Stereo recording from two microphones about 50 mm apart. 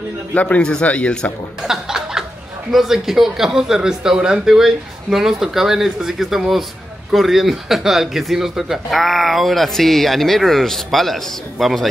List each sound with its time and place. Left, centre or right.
0.3 s a man's voice: left
1.6 s chuckle: centre
2.7 s speech: centre
9.0 s speech: centre